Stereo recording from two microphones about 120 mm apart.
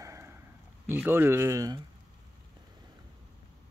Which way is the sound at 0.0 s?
20° right (ahead or behind).